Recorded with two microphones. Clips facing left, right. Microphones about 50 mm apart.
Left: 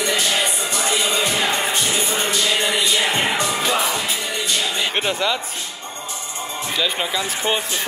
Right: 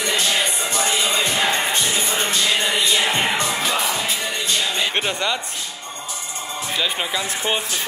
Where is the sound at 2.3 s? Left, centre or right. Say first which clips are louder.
Even; left.